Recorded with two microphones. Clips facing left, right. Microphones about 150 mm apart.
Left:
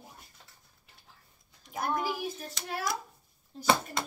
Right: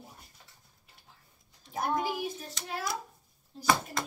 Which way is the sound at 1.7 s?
25° right (ahead or behind).